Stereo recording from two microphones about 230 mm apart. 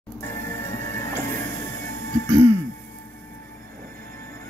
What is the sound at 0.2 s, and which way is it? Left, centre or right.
Music, centre.